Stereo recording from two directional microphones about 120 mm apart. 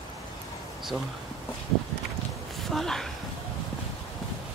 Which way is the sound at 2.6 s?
5° left (ahead or behind).